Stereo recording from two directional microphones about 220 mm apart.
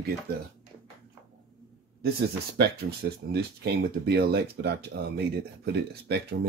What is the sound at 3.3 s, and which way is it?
Speech, 45° right (ahead or behind).